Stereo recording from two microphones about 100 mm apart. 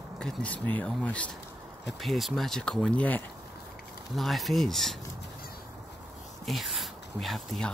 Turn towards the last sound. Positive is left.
turn(degrees=0)  # may be behind; listen again after turning